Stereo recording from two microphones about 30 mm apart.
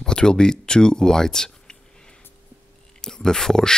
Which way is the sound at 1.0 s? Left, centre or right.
Centre.